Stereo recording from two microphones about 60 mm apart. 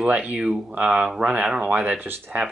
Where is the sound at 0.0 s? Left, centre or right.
Right.